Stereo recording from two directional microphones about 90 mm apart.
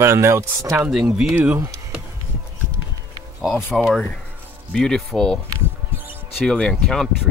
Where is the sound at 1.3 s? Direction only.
20° right (ahead or behind).